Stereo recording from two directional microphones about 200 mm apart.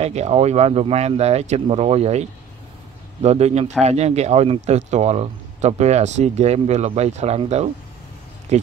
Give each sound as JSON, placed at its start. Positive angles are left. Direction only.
{"t": 0.0, "sound": "speech", "side_deg": -35}